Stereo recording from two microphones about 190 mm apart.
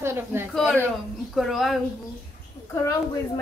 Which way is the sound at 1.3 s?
Centre (ahead or behind).